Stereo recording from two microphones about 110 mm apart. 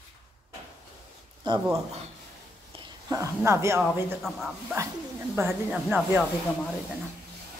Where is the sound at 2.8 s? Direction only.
30° right (ahead or behind).